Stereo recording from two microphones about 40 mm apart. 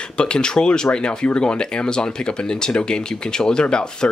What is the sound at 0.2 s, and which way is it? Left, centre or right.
Speech, left.